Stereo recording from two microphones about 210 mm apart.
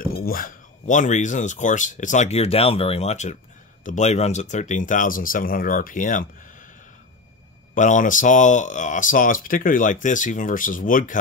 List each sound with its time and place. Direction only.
0.0 s speech: 45° left (ahead or behind)
7.7 s speech: 35° left (ahead or behind)